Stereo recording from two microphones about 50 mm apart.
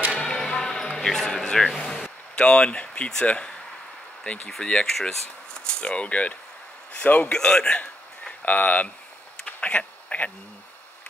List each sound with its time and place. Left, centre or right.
0.2 s basketball bounce: centre
2.3 s speech: left
7.3 s a man's voice: centre
8.5 s speech: left
9.6 s a sound: left